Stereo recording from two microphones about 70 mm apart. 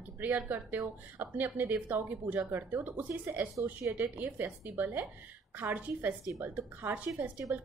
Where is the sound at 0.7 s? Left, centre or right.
Right.